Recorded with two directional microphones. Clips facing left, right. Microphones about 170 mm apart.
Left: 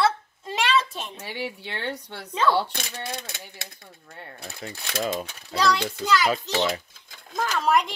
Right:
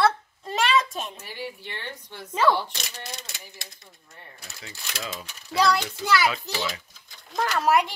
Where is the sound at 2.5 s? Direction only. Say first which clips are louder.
Left 4 dB; 55° left (ahead or behind).